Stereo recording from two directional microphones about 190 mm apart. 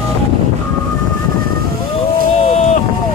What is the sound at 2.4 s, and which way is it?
Boat, 35° left (ahead or behind).